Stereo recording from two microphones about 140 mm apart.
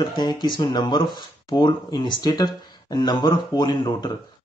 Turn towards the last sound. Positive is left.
turn(degrees=35)  # may be behind; listen again after turning